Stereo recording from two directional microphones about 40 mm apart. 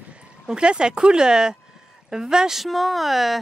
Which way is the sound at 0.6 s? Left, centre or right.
Right.